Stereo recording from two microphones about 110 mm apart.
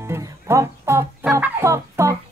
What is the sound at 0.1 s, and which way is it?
Music, 25° right (ahead or behind).